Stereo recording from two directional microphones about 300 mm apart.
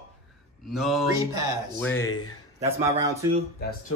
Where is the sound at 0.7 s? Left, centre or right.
Centre.